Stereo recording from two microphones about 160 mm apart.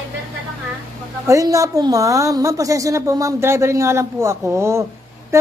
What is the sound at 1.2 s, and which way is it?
A woman's voice, 20° right (ahead or behind).